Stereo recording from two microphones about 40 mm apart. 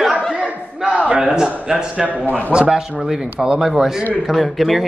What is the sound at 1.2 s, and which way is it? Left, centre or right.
Speech, centre.